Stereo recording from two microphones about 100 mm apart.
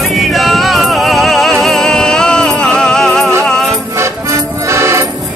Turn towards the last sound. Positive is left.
turn(degrees=-30)  # may be behind; listen again after turning